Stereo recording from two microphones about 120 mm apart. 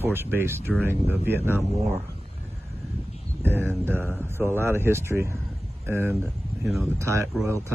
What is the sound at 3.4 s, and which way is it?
Speech, 20° right (ahead or behind).